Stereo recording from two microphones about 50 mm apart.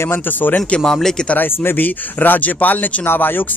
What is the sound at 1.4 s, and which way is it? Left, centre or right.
Speech, left.